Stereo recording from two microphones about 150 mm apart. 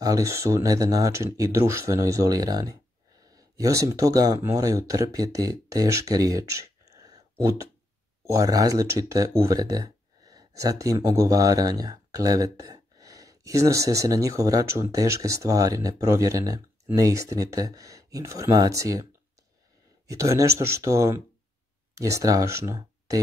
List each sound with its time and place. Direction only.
0.0 s speech: 20° right (ahead or behind)
20.1 s speech: 20° right (ahead or behind)